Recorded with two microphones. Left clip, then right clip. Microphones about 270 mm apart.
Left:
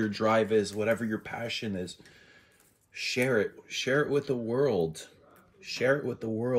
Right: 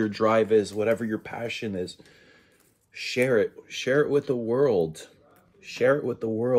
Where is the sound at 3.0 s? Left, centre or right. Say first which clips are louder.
Right 4 dB; centre.